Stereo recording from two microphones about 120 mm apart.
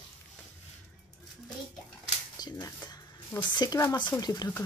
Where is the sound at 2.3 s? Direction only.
35° left (ahead or behind).